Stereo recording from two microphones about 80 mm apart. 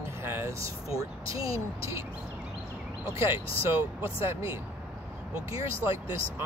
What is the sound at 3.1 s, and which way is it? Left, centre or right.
Speech, right.